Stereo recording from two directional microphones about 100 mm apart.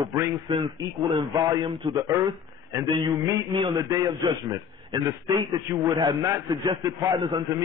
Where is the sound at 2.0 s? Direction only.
35° right (ahead or behind).